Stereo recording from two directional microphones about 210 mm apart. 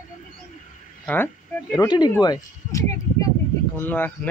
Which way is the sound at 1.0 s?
5° left (ahead or behind).